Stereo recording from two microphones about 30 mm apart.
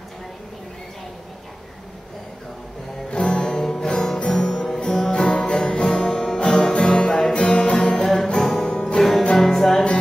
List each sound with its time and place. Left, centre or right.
3.3 s music: left
4.2 s music: left
7.7 s music: left
8.0 s music: centre